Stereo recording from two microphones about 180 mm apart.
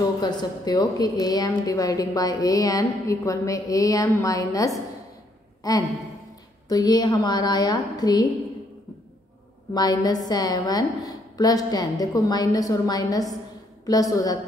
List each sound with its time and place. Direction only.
0.2 s a woman's voice: 20° left (ahead or behind)
9.8 s a woman's voice: 20° left (ahead or behind)